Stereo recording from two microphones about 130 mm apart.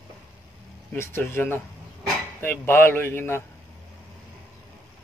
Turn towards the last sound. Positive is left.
turn(degrees=15)  # may be behind; listen again after turning